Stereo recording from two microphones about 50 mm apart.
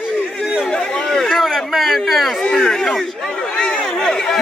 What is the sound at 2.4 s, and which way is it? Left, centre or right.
Speech, centre.